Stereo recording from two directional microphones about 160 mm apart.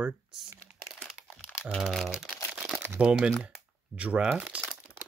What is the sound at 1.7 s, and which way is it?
Speech, 5° left (ahead or behind).